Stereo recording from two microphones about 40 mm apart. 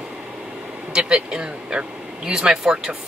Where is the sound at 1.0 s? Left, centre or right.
Right.